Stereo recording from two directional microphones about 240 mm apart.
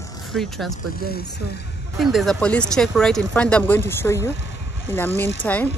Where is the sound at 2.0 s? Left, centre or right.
Centre.